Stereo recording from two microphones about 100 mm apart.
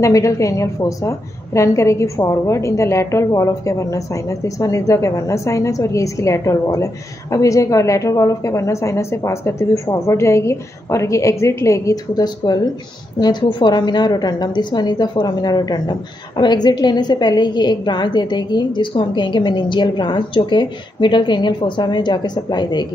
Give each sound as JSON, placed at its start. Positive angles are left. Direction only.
{"t": 0.0, "sound": "a woman's voice", "side_deg": 30}